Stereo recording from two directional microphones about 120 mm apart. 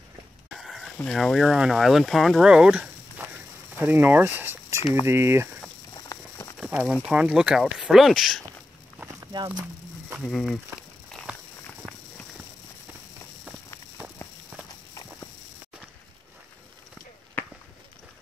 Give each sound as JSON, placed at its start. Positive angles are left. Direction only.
{"t": 0.6, "sound": "a sound", "side_deg": 0}
{"t": 1.0, "sound": "speech", "side_deg": 0}
{"t": 3.3, "sound": "a sound", "side_deg": -15}
{"t": 5.0, "sound": "speech", "side_deg": -20}
{"t": 5.9, "sound": "patter", "side_deg": 30}
{"t": 6.7, "sound": "speech", "side_deg": -10}
{"t": 9.0, "sound": "a sound", "side_deg": -35}
{"t": 10.2, "sound": "speech", "side_deg": 5}
{"t": 11.8, "sound": "walk", "side_deg": 5}